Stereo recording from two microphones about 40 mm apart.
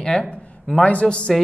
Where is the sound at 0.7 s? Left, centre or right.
Left.